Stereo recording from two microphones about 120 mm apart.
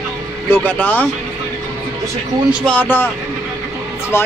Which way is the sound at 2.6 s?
15° left (ahead or behind).